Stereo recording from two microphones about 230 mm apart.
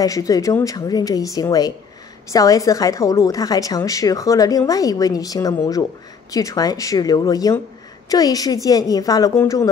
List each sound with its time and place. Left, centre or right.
0.0 s a woman's voice: centre